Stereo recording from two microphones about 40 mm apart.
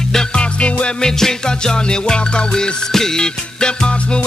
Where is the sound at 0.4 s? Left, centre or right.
Left.